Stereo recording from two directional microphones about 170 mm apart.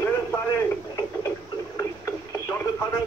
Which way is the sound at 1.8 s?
20° left (ahead or behind).